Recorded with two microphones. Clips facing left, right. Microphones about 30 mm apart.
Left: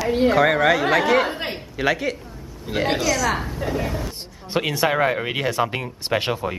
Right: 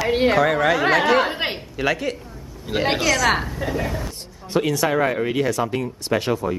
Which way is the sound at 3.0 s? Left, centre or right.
Centre.